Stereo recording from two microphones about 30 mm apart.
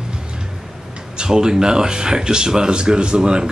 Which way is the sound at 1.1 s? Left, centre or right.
Right.